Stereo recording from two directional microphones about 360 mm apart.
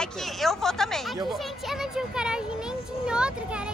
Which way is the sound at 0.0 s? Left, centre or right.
Centre.